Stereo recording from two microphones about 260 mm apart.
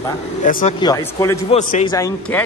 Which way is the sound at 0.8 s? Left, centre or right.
Centre.